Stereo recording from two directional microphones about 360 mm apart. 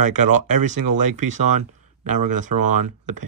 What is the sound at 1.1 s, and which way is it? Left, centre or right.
Speech, right.